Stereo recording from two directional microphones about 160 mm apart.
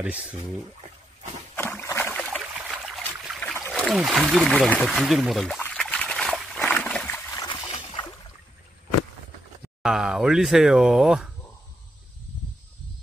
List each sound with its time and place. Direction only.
0.0 s speech: 5° right (ahead or behind)
1.6 s a sound: 15° left (ahead or behind)
2.3 s boat: centre (ahead or behind)
5.6 s a sound: 5° left (ahead or behind)
7.3 s boat: 25° left (ahead or behind)
9.8 s speech: 5° right (ahead or behind)